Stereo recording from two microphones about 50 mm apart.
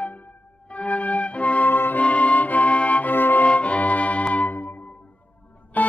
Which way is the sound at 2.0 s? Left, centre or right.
Left.